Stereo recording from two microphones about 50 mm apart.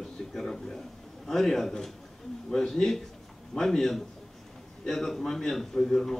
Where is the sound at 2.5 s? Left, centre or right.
Centre.